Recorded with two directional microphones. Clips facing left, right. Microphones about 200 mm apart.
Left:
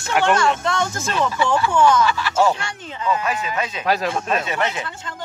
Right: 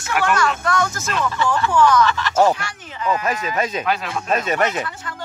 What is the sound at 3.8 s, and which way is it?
Speech, 35° left (ahead or behind).